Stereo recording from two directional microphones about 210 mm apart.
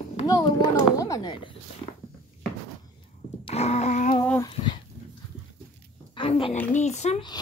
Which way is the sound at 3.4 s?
30° left (ahead or behind).